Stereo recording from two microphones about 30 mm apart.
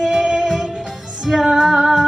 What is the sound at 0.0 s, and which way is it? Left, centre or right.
Music, centre.